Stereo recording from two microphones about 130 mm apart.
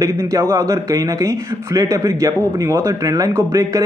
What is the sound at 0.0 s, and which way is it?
Speech, 25° right (ahead or behind).